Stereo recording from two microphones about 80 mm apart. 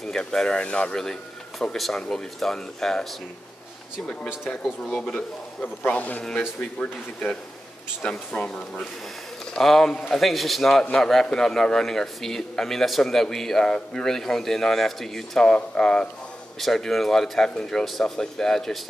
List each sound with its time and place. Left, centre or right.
0.0 s speech: centre
4.8 s a man's voice: centre